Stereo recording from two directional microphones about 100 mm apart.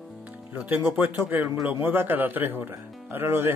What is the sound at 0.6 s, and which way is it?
Speech, 20° right (ahead or behind).